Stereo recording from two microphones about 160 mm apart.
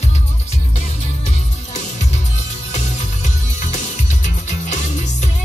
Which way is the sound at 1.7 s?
45° left (ahead or behind).